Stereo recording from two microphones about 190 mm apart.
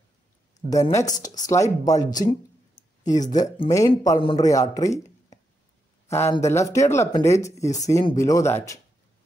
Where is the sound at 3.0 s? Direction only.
40° left (ahead or behind).